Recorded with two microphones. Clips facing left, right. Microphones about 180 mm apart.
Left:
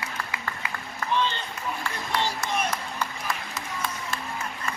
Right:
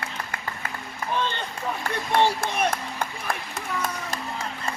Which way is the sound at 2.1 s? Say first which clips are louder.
Right 7 dB; 55° right (ahead or behind).